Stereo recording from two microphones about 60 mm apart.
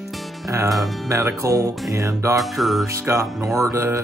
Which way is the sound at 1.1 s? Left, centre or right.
Right.